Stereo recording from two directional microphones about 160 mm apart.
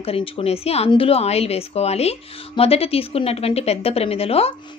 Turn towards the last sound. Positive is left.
turn(degrees=40)  # may be behind; listen again after turning